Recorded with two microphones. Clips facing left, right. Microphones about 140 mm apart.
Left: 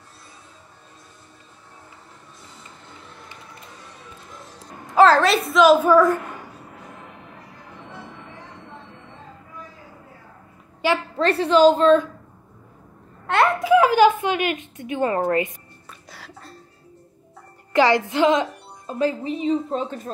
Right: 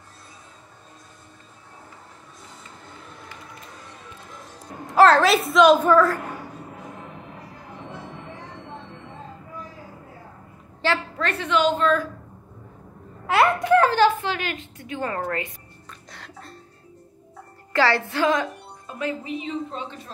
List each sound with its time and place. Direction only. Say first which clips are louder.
4.8 s a child's voice: left 1 dB; centre (ahead or behind)
5.9 s a woman's voice: left 3 dB; 20° left (ahead or behind)
10.8 s a woman's voice: left 3 dB; 10° left (ahead or behind)
11.1 s speech: left 7 dB; 35° left (ahead or behind)
13.3 s speech: left 1 dB; centre (ahead or behind); by 15.5 s 20° left (ahead or behind)
15.9 s music: left 1 dB; 5° left (ahead or behind)
17.7 s a woman's voice: left 4 dB; 15° left (ahead or behind)
18.9 s speech: left 6 dB; 35° left (ahead or behind)